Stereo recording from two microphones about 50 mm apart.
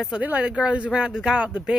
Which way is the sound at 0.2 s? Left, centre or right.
Right.